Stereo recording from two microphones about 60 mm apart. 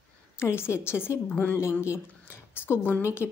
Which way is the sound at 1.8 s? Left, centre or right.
Left.